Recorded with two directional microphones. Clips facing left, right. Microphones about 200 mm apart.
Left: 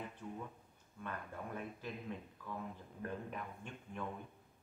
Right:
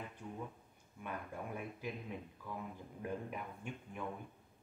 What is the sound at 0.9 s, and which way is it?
Speech, 10° right (ahead or behind).